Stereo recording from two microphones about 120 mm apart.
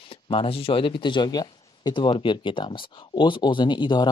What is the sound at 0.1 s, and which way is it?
Speech, 50° left (ahead or behind).